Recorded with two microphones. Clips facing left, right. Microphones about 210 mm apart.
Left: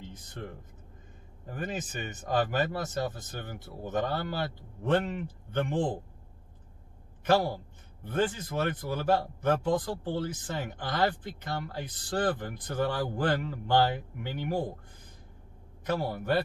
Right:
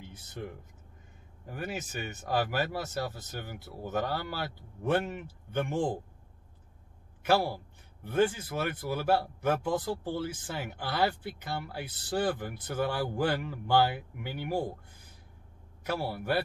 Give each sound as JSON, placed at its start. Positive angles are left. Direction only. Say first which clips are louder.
{"t": 0.0, "sound": "a sound", "louder": "even", "side_deg": -10}
{"t": 1.5, "sound": "a man's voice", "louder": "left 1 dB", "side_deg": -10}
{"t": 7.2, "sound": "a man's voice", "louder": "left 1 dB", "side_deg": -10}
{"t": 15.8, "sound": "a man's voice", "louder": "left 2 dB", "side_deg": -10}